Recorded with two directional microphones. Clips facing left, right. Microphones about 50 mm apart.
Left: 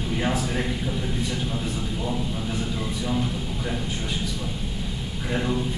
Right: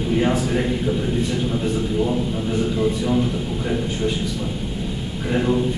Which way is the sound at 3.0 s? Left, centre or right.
Centre.